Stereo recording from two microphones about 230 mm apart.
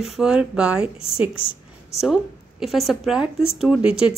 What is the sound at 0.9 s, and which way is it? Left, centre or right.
Speech, left.